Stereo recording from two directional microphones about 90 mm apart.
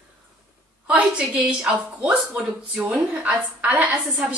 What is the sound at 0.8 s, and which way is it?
A woman's voice, 15° right (ahead or behind).